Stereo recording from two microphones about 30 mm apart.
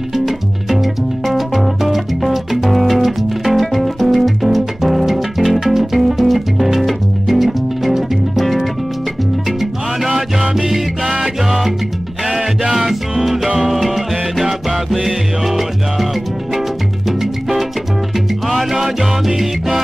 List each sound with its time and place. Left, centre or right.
0.7 s music: centre
10.0 s music: centre
12.7 s music: centre
17.2 s music: centre